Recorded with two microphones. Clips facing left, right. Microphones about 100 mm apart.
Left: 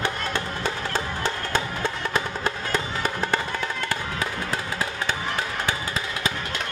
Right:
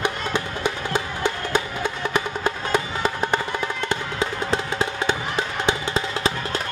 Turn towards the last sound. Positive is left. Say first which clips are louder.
# right 5 dB
turn(degrees=-25)  # may be behind; listen again after turning